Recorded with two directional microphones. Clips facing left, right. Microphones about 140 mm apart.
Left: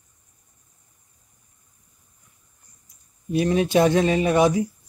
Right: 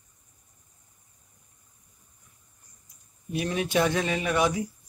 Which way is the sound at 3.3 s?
30° left (ahead or behind).